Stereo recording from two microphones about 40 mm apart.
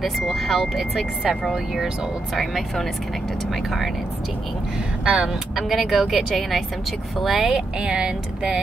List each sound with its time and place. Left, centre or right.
0.0 s speech: centre
2.3 s speech: centre
5.0 s speech: right
5.6 s a woman's voice: centre
7.8 s speech: centre